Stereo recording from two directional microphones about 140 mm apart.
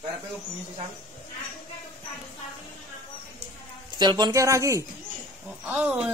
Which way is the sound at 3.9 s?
30° right (ahead or behind).